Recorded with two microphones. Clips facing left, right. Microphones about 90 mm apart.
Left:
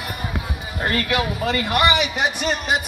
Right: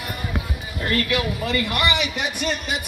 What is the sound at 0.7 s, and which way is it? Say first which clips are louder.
A man's voice: left 1 dB; 40° left (ahead or behind).